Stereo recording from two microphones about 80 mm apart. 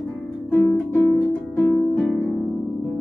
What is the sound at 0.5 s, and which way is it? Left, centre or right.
Music, left.